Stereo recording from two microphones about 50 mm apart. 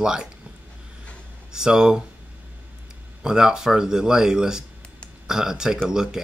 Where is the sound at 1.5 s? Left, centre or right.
Centre.